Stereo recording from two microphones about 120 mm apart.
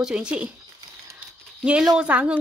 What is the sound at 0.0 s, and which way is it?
Speech, 10° right (ahead or behind).